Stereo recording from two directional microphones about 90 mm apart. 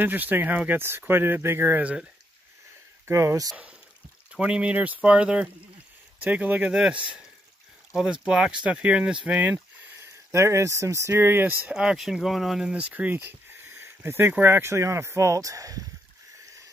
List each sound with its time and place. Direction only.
0.0 s speech: 20° right (ahead or behind)
3.1 s speech: 35° right (ahead or behind)
4.3 s speech: 10° right (ahead or behind)
9.9 s speech: 30° right (ahead or behind)
11.7 s speech: 10° right (ahead or behind)
12.7 s speech: 15° right (ahead or behind); by 15.9 s 40° right (ahead or behind)